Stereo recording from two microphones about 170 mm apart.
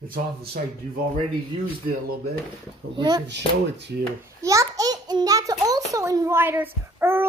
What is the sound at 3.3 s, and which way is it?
Speech, 90° right.